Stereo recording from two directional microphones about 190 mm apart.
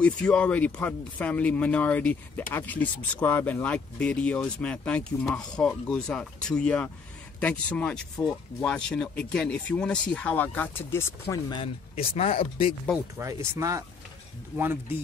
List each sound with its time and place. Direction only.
0.0 s speech: 5° left (ahead or behind)
11.6 s speech: 30° left (ahead or behind)
13.6 s speech: 15° right (ahead or behind)